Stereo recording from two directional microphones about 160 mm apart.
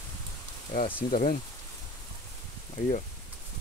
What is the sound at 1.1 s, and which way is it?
Speech, 60° left (ahead or behind).